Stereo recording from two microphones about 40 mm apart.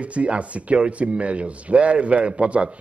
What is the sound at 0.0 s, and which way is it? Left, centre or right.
Speech, right.